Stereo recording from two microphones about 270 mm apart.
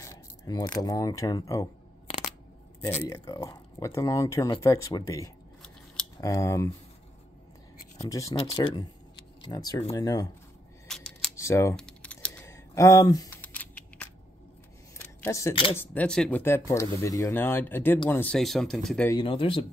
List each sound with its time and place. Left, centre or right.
0.0 s speech: centre
3.0 s speech: centre
8.0 s speech: centre
10.9 s camera: centre
15.0 s a sound: centre
15.7 s speech: centre
19.1 s speech: centre